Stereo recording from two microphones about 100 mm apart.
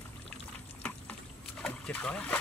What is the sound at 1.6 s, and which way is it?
Splash, 15° left (ahead or behind).